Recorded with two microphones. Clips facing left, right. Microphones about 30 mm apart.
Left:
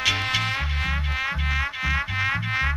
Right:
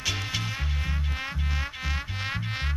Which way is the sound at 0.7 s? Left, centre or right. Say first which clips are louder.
Left 7 dB; left.